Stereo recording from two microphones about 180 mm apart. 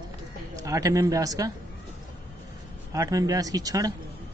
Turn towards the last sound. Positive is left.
turn(degrees=-20)  # may be behind; listen again after turning